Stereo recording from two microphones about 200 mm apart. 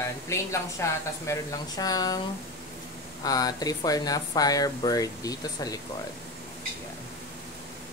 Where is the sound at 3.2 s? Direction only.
20° left (ahead or behind).